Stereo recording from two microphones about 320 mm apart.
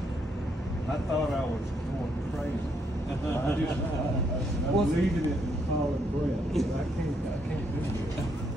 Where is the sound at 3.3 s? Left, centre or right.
Centre.